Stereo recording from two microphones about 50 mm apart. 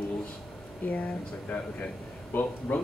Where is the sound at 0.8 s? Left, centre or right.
Left.